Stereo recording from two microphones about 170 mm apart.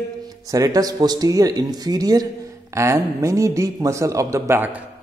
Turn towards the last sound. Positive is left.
turn(degrees=-10)  # may be behind; listen again after turning